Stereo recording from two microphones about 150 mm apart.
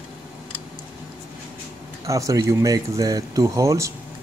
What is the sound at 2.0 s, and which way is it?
Speech, 20° right (ahead or behind).